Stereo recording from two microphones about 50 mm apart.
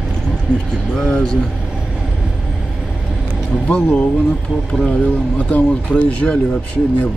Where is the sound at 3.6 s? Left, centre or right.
Left.